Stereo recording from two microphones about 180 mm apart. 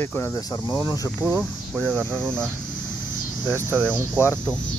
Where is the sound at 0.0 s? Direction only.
15° left (ahead or behind).